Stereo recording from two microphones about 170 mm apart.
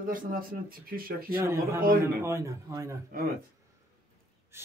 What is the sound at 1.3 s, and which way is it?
Speech, 15° right (ahead or behind).